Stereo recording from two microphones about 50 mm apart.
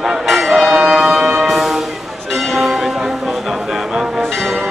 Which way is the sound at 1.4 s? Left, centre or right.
Centre.